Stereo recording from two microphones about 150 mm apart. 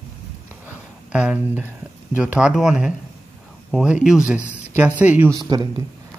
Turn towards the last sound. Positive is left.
turn(degrees=-25)  # may be behind; listen again after turning